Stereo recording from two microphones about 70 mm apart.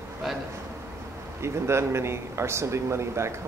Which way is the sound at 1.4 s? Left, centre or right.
Right.